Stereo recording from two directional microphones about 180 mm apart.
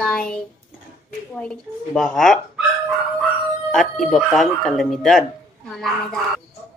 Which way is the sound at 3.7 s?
Centre (ahead or behind).